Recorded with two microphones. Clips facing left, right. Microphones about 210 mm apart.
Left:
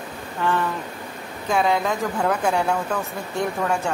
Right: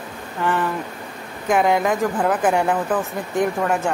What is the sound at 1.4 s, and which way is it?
A woman's voice, 15° right (ahead or behind).